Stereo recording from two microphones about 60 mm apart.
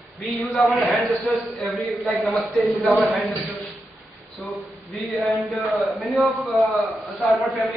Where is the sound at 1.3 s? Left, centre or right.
Left.